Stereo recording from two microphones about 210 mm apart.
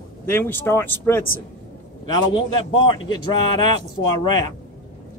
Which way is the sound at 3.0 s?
20° left (ahead or behind).